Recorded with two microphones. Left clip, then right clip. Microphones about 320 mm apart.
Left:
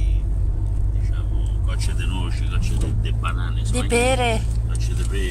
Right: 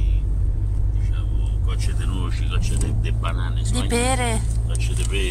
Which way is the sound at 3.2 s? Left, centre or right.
Centre.